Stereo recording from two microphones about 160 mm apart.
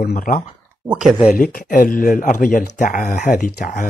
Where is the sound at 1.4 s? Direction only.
55° left (ahead or behind).